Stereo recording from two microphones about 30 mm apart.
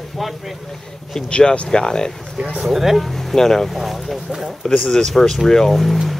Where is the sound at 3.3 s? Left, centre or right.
Centre.